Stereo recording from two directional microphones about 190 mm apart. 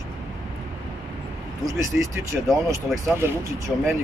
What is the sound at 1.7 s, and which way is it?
Speech, 15° right (ahead or behind).